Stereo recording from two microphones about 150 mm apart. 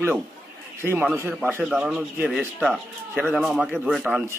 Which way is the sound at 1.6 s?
5° right (ahead or behind).